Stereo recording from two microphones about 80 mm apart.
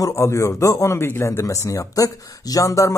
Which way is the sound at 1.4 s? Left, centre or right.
Left.